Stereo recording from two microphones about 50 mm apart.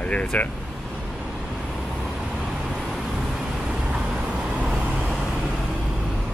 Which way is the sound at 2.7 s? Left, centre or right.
Centre.